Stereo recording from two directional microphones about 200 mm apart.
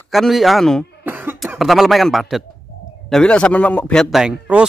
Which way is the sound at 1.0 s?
10° right (ahead or behind).